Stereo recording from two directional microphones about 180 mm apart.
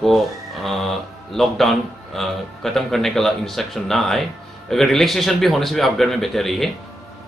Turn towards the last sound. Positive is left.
turn(degrees=0)  # may be behind; listen again after turning